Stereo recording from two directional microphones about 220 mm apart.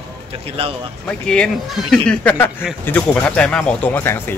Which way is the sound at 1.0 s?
5° left (ahead or behind).